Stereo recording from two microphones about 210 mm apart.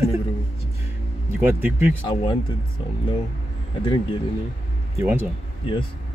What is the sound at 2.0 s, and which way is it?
Speech, 25° left (ahead or behind).